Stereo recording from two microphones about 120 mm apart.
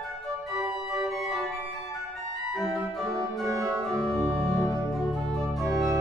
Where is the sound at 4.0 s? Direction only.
5° left (ahead or behind).